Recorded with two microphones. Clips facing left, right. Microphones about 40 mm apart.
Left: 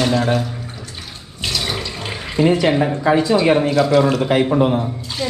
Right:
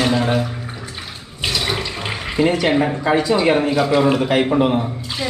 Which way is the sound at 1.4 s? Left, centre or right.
Centre.